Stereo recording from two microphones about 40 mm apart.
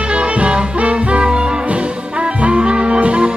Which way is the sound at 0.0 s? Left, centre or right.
Right.